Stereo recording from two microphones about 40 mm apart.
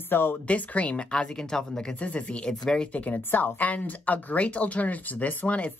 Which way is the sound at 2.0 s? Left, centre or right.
Left.